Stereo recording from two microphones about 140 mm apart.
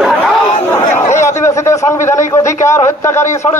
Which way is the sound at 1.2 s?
20° left (ahead or behind).